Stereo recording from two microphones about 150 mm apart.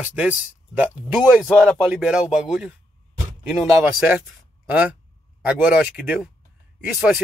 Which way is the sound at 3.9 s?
5° right (ahead or behind).